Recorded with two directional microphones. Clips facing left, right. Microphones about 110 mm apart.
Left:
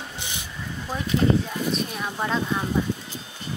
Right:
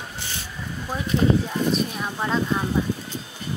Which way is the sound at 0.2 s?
15° left (ahead or behind).